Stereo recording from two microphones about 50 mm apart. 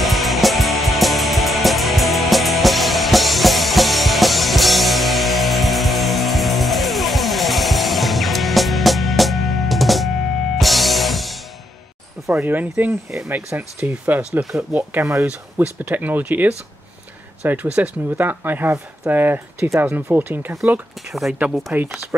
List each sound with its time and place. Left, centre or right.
0.0 s music: centre
12.3 s speech: right
12.5 s speech: right
18.1 s speech: right
21.1 s speech: centre
21.7 s speech: right